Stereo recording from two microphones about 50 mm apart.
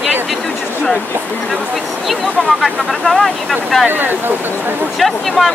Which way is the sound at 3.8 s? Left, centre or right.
Right.